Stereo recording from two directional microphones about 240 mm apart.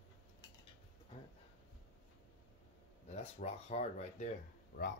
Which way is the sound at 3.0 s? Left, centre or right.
Left.